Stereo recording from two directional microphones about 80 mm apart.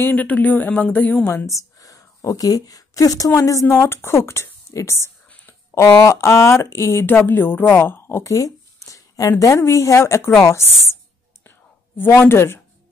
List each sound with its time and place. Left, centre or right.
0.0 s speech: centre
1.3 s speech: left
8.3 s a sound: left
9.4 s speech: left
12.0 s speech: left